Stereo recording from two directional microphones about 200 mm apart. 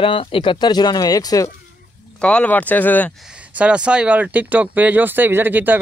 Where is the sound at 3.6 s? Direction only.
5° right (ahead or behind).